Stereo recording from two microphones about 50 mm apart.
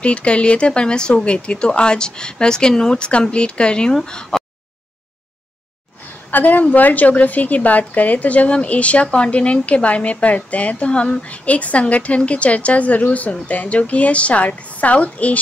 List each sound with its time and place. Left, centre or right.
0.0 s speech: left
6.3 s a woman's voice: left